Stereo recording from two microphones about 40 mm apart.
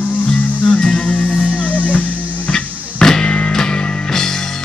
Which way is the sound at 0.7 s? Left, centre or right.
Left.